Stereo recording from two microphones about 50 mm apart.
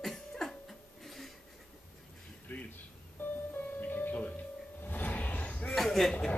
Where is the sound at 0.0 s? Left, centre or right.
Centre.